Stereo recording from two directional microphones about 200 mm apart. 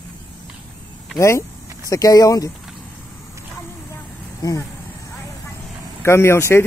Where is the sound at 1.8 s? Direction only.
15° left (ahead or behind).